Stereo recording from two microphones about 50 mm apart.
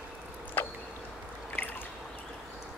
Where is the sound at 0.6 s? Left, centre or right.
Left.